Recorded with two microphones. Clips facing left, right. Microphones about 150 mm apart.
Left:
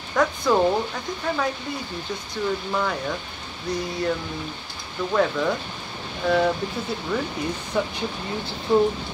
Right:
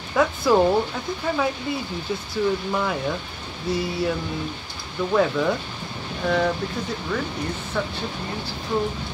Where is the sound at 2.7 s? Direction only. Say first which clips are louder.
Right 1 dB; 5° right (ahead or behind).